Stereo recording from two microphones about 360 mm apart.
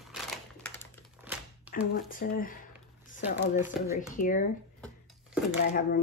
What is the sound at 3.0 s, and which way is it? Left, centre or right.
Crumpling, left.